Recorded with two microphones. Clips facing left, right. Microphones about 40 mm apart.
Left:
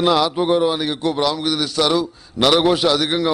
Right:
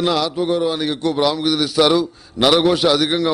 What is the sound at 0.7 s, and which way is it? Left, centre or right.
A man's voice, centre.